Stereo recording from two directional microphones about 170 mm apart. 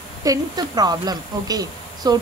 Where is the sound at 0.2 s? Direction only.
20° right (ahead or behind).